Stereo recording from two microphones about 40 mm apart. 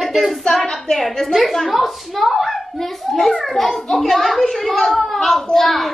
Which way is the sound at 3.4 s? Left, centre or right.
Centre.